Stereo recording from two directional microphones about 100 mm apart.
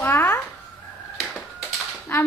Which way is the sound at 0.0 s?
25° left (ahead or behind).